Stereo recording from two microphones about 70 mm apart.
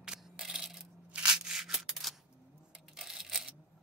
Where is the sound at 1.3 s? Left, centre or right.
Centre.